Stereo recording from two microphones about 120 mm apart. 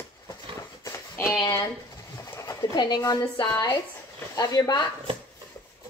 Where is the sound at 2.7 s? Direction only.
35° left (ahead or behind).